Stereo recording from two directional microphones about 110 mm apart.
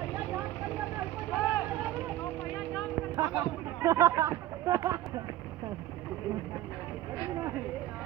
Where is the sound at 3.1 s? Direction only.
35° right (ahead or behind).